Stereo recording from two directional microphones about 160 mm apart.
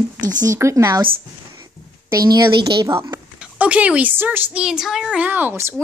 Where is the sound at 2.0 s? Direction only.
25° right (ahead or behind).